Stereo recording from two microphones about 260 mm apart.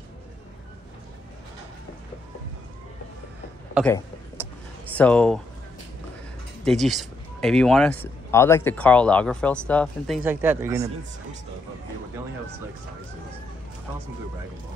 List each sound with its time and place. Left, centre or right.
3.8 s speech: centre
4.4 s a sound: centre
4.9 s speech: centre
6.6 s speech: centre